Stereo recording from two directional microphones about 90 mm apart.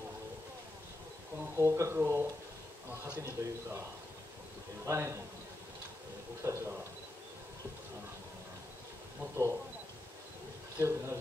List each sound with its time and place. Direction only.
1.6 s a man's voice: 30° right (ahead or behind)
4.8 s speech: 30° right (ahead or behind)
6.4 s speech: 25° right (ahead or behind)
9.2 s speech: 30° right (ahead or behind)
10.8 s a man's voice: 30° right (ahead or behind)